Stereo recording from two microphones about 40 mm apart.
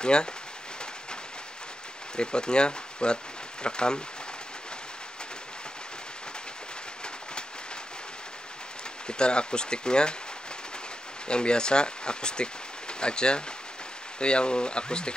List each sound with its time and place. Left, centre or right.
0.0 s speech: left
2.1 s speech: left
9.0 s speech: left
11.2 s speech: left